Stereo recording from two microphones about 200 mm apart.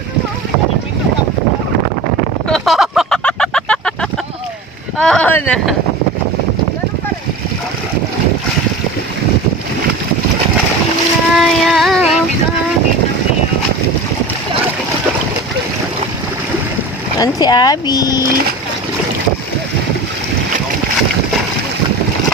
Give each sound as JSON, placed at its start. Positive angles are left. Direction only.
{"t": 2.4, "sound": "a sound", "side_deg": 0}
{"t": 5.0, "sound": "speech", "side_deg": 5}
{"t": 11.3, "sound": "female singing", "side_deg": 0}
{"t": 17.2, "sound": "speech", "side_deg": 20}